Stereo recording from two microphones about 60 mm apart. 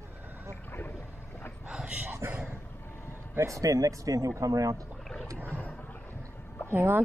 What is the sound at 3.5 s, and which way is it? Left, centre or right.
Speech, right.